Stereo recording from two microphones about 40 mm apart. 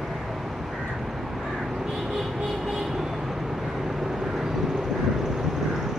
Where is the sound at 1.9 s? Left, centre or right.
Centre.